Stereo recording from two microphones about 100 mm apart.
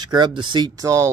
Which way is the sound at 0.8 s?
30° right (ahead or behind).